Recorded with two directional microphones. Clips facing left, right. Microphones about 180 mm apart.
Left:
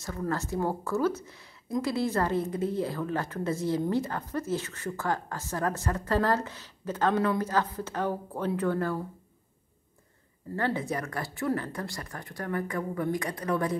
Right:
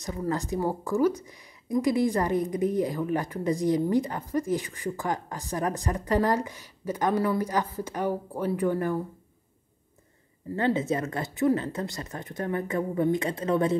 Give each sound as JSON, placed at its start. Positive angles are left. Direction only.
{"t": 0.0, "sound": "speech", "side_deg": -15}
{"t": 10.5, "sound": "speech", "side_deg": -20}